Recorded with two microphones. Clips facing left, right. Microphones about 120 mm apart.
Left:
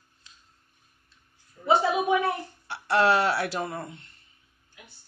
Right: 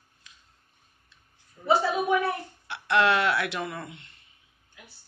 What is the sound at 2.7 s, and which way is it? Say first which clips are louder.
Speech: left 1 dB; 35° left (ahead or behind).